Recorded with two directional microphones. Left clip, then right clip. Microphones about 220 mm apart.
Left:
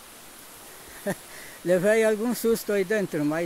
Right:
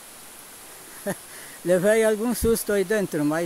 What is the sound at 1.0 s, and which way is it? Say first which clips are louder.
Speech: even; 5° right (ahead or behind).